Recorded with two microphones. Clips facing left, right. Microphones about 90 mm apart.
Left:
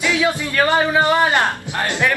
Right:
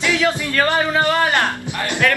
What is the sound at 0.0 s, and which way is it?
A man's voice, 15° left (ahead or behind).